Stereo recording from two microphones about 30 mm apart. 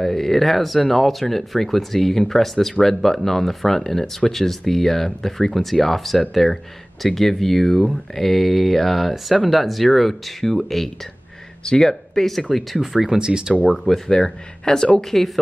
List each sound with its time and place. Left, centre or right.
0.0 s speech: centre
12.7 s speech: centre
13.2 s speech: right
13.7 s speech: centre
14.1 s speech: left
15.0 s speech: centre